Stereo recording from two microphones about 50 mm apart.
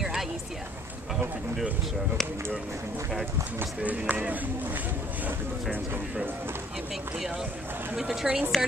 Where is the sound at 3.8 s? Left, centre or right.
Right.